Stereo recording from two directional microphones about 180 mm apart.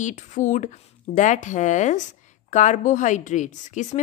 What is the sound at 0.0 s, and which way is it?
A woman's voice, 45° left (ahead or behind).